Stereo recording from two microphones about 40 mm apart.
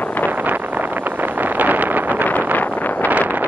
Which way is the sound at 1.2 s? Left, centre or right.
Right.